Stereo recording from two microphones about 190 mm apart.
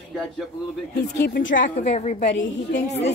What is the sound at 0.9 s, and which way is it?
Speech, 60° left (ahead or behind).